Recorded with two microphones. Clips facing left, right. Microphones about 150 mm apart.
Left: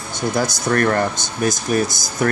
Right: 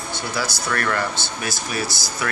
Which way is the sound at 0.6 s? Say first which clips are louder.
Left 7 dB; 40° left (ahead or behind).